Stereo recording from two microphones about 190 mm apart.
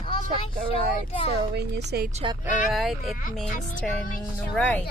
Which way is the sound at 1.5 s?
60° right (ahead or behind).